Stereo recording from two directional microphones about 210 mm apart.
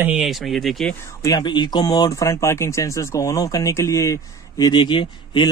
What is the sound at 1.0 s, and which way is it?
Speech, 15° left (ahead or behind).